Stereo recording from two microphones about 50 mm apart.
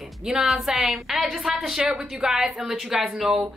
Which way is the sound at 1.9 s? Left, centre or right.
Right.